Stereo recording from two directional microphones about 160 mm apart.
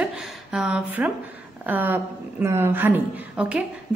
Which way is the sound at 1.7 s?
10° right (ahead or behind).